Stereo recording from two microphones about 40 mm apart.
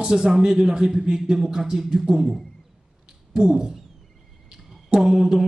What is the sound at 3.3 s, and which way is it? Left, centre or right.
Speech, centre.